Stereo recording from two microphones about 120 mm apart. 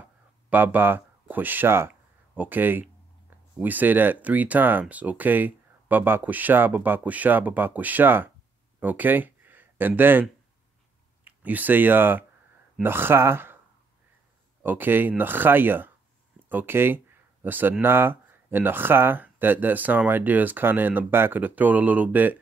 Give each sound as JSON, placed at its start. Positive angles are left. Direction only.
{"t": 0.5, "sound": "speech", "side_deg": -15}
{"t": 11.2, "sound": "speech", "side_deg": -15}
{"t": 14.6, "sound": "speech", "side_deg": -15}